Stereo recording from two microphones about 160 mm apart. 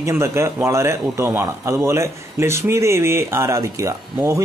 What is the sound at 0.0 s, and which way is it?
A man's voice, 15° right (ahead or behind).